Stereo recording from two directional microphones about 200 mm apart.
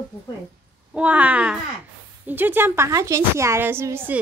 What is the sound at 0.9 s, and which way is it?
A woman's voice, 10° right (ahead or behind).